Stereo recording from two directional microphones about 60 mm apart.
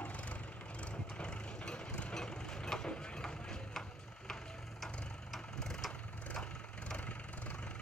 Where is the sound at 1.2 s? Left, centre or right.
Centre.